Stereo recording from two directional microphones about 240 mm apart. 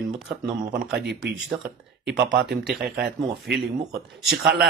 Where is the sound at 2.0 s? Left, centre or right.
Right.